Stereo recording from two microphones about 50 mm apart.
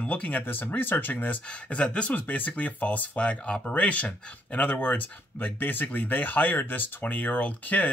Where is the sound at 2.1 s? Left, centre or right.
Left.